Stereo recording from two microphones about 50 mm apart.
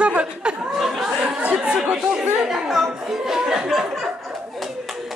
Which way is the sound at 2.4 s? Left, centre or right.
Centre.